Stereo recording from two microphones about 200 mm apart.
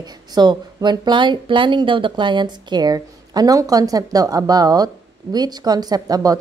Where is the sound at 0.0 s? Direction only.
20° right (ahead or behind).